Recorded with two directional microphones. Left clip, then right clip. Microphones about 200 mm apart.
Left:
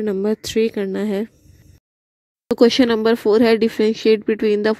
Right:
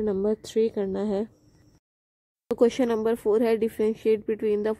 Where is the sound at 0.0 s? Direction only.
40° left (ahead or behind).